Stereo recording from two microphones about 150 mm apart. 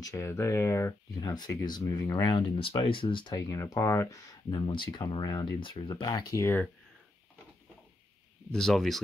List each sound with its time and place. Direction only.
0.0 s speech: 15° left (ahead or behind)
8.5 s speech: centre (ahead or behind)